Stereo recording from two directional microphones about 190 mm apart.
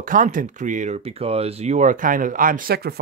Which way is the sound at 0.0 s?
45° right (ahead or behind).